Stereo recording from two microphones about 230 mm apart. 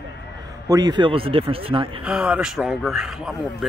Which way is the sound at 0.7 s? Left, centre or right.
Centre.